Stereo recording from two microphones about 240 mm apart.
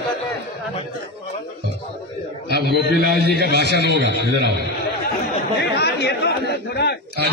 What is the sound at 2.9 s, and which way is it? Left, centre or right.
Speech, left.